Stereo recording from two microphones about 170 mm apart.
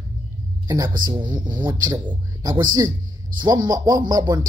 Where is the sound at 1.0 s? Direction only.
25° right (ahead or behind).